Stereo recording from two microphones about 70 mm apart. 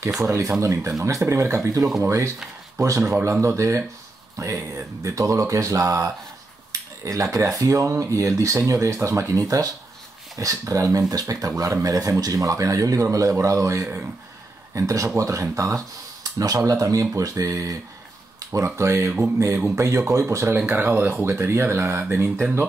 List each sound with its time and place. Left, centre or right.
0.3 s speech: right
18.8 s speech: right
20.5 s speech: right